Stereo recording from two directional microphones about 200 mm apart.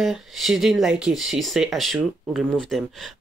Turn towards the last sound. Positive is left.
turn(degrees=0)  # may be behind; listen again after turning